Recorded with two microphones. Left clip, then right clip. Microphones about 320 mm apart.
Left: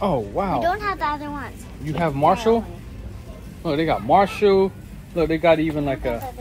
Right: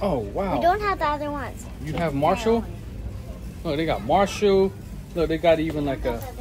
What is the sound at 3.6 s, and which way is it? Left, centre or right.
Speech, centre.